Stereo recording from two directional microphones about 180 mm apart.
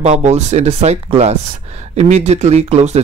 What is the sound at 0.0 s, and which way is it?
Speech, 40° right (ahead or behind).